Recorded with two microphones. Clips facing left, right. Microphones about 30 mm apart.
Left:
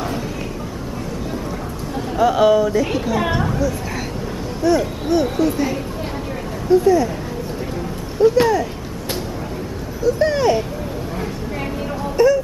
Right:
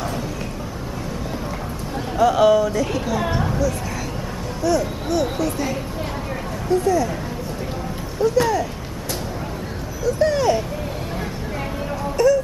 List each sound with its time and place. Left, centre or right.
2.1 s speech: centre
3.4 s a sound: centre
4.6 s speech: centre
6.8 s speech: centre
8.2 s speech: centre
10.0 s speech: centre
12.2 s wail: left